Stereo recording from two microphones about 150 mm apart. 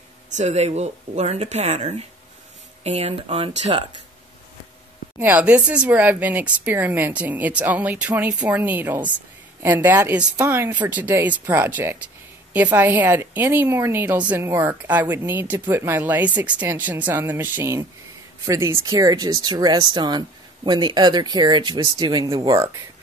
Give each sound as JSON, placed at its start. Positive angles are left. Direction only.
{"t": 0.4, "sound": "speech", "side_deg": -50}
{"t": 5.2, "sound": "speech", "side_deg": -10}